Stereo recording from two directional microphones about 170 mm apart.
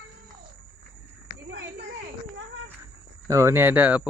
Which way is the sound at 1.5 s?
90° right.